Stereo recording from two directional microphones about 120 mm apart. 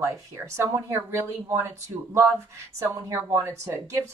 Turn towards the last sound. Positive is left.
turn(degrees=-25)  # may be behind; listen again after turning